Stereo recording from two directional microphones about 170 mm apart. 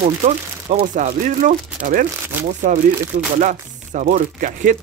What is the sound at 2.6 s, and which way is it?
Speech, 50° right (ahead or behind).